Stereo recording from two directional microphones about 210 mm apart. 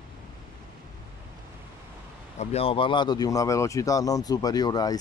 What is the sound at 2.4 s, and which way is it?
Speech, 25° left (ahead or behind).